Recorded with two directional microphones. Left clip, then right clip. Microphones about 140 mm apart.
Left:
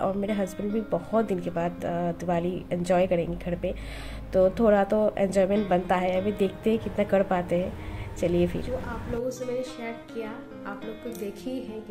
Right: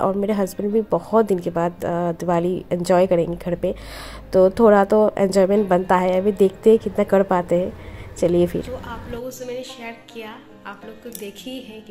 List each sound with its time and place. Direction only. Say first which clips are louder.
0.0 s a woman's voice: right 7 dB; 40° right (ahead or behind)
9.5 s a woman's voice: right 1 dB; centre (ahead or behind)